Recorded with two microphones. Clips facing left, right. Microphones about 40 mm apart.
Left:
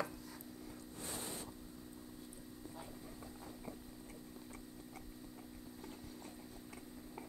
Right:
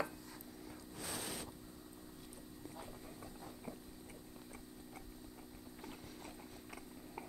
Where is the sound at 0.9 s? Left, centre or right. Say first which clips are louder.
Right 2 dB; right.